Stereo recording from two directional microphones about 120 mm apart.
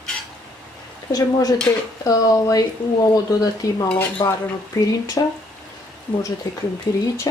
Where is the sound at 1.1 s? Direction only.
30° left (ahead or behind).